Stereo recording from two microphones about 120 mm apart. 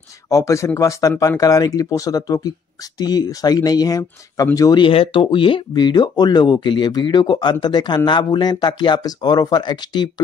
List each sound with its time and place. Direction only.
0.3 s speech: 25° left (ahead or behind)
4.8 s speech: 50° left (ahead or behind)